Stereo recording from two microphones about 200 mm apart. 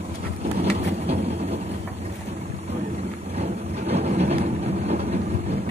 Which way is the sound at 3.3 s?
30° right (ahead or behind).